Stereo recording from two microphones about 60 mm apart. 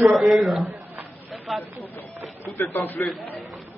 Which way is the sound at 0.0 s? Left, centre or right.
Centre.